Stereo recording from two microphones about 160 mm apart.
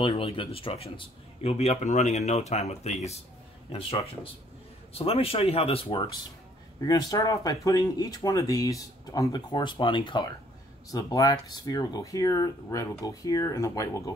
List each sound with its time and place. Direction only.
0.0 s speech: 35° left (ahead or behind)
6.8 s speech: 25° left (ahead or behind)